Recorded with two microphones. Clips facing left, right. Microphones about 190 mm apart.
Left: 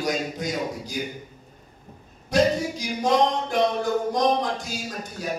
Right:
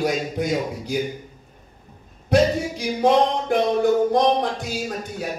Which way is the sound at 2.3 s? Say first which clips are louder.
Right 3 dB; 55° right (ahead or behind).